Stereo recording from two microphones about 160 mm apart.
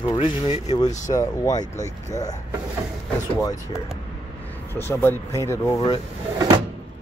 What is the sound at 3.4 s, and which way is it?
Speech, 20° left (ahead or behind).